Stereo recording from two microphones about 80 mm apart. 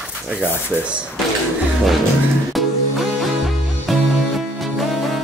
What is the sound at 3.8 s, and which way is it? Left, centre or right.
Music, centre.